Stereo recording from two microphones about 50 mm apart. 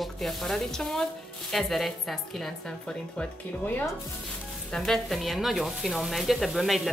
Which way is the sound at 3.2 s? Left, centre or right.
Left.